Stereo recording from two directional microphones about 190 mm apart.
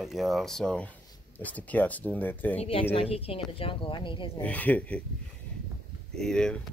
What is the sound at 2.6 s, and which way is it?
Speech, 30° left (ahead or behind).